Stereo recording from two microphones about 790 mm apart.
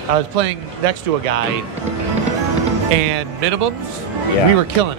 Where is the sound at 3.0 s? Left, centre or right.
Right.